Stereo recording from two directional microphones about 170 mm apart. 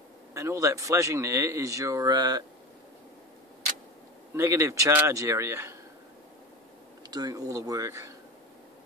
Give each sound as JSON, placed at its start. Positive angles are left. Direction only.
{"t": 0.3, "sound": "speech", "side_deg": -15}
{"t": 4.4, "sound": "speech", "side_deg": -15}
{"t": 7.1, "sound": "speech", "side_deg": -20}